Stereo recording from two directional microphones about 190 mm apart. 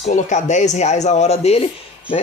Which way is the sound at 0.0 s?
40° left (ahead or behind).